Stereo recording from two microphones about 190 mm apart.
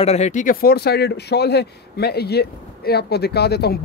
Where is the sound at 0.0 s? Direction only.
35° left (ahead or behind).